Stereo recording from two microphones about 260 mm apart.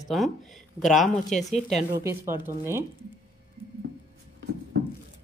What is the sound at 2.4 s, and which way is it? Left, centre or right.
Speech, centre.